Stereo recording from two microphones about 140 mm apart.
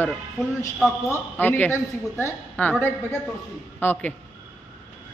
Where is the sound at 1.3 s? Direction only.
15° left (ahead or behind).